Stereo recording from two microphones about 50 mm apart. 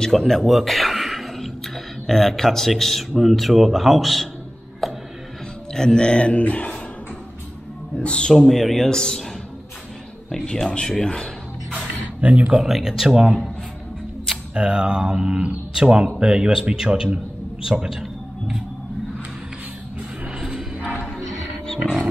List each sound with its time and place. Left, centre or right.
0.0 s a sound: centre
2.0 s speech: centre
4.8 s music: centre
5.7 s a man's voice: centre; by 6.8 s left
7.9 s a man's voice: left
8.4 s speech: centre
10.3 s speech: centre
12.2 s speech: right
12.6 s speech: centre
14.5 s speech: centre
20.3 s music: centre